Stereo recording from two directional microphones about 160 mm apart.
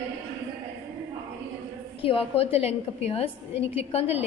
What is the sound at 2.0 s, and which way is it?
A woman's voice, 35° left (ahead or behind).